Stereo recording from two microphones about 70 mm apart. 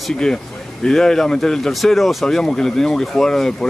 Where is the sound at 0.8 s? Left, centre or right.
Centre.